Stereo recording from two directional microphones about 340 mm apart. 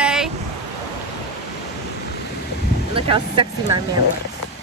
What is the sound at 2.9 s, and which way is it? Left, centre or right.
Speech, centre.